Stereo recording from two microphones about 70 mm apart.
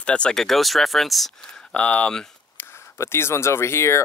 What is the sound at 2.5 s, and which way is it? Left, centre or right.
Speech, left.